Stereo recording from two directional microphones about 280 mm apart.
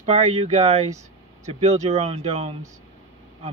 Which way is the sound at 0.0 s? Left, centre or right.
Right.